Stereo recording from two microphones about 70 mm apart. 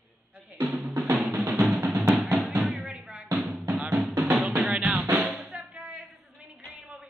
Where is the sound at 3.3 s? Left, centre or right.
Centre.